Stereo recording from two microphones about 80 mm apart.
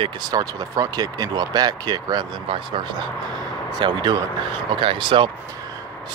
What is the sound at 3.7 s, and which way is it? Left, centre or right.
Speech, right.